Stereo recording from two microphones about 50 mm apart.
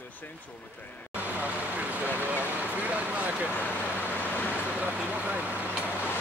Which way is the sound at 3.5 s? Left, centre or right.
Left.